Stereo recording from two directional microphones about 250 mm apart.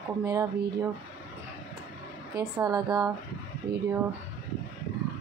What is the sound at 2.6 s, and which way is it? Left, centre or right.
Speech, centre.